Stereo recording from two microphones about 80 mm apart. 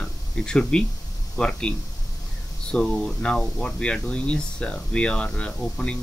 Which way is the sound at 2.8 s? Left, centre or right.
Centre.